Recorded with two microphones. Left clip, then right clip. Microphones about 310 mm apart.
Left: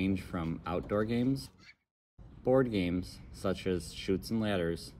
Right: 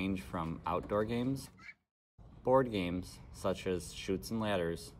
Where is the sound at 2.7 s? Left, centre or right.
Centre.